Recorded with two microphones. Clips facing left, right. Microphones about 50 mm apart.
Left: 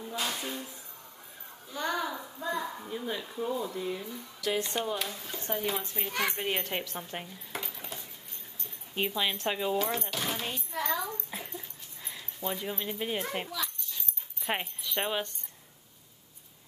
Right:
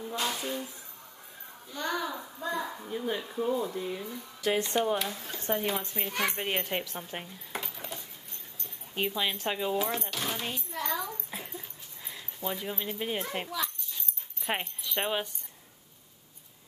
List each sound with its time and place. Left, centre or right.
0.1 s a child's voice: centre
1.7 s a child's voice: centre
5.0 s speech: right
5.7 s a child's voice: centre